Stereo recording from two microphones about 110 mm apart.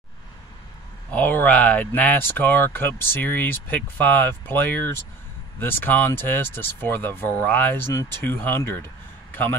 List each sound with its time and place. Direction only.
1.1 s a man's voice: 15° left (ahead or behind)